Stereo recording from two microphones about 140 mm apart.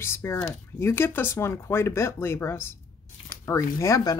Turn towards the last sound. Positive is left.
turn(degrees=25)  # may be behind; listen again after turning